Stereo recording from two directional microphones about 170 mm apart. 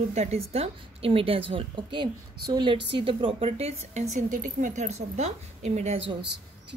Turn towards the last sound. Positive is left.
turn(degrees=-35)  # may be behind; listen again after turning